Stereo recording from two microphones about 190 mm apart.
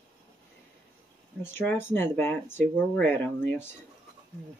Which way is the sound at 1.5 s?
10° left (ahead or behind).